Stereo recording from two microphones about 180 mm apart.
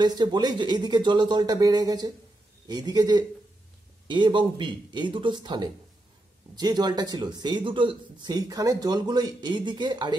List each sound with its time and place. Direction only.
0.0 s speech: 25° right (ahead or behind)